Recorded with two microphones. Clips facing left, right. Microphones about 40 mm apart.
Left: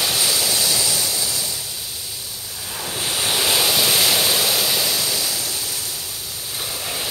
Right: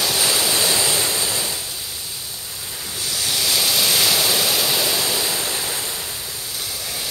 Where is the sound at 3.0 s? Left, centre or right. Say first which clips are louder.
Left 2 dB; left.